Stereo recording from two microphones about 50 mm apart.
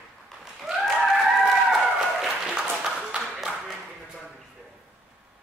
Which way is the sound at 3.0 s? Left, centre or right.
Centre.